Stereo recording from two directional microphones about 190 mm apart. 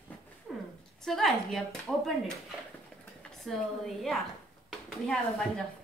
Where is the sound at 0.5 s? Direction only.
5° left (ahead or behind).